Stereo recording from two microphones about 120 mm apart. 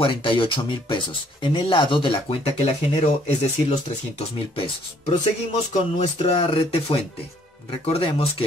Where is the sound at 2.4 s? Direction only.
60° left (ahead or behind).